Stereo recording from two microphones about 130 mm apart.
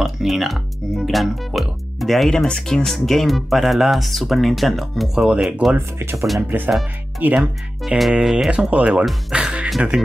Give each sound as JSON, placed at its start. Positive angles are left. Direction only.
{"t": 0.0, "sound": "speech", "side_deg": 0}
{"t": 5.9, "sound": "speech", "side_deg": -20}
{"t": 7.3, "sound": "speech", "side_deg": -5}